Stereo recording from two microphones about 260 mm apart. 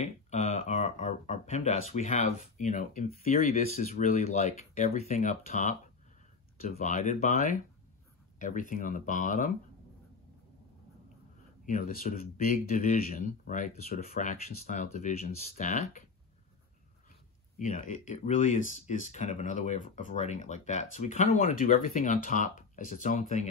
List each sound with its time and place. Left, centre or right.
0.0 s speech: left
11.6 s speech: left
17.6 s speech: left